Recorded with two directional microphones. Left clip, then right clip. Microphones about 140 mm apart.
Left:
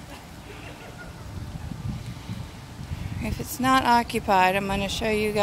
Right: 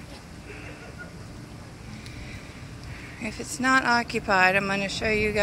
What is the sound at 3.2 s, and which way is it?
Speech, 25° left (ahead or behind).